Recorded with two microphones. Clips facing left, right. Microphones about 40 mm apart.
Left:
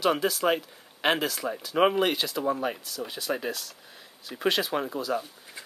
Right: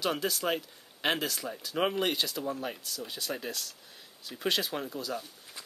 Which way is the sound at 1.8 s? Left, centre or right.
Centre.